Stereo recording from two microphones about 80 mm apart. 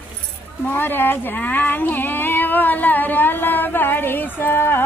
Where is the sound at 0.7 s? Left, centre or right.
Left.